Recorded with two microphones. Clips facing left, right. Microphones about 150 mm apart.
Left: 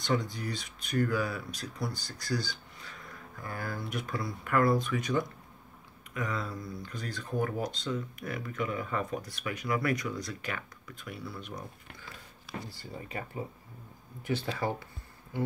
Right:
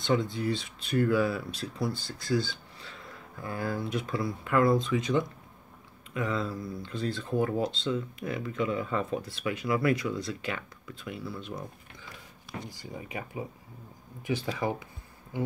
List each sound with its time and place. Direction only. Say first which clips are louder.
0.0 s speech: right 4 dB; 25° right (ahead or behind)
12.6 s speech: right 2 dB; 15° right (ahead or behind)
15.3 s a sound: right 1 dB; 15° right (ahead or behind)